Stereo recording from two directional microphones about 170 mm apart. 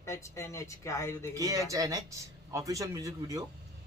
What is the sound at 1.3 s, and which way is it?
A man's voice, 20° right (ahead or behind).